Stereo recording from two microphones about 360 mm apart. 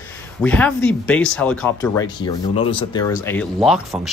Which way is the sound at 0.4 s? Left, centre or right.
Centre.